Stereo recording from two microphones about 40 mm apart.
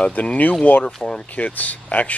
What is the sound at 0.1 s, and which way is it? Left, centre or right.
Speech, left.